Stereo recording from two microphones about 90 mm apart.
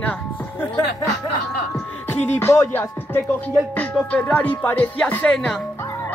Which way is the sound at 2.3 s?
25° left (ahead or behind).